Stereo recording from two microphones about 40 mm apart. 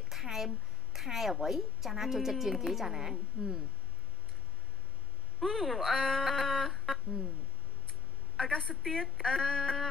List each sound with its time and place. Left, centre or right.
0.1 s a woman's voice: centre
5.4 s speech: centre
8.5 s a woman's voice: centre
8.8 s female singing: centre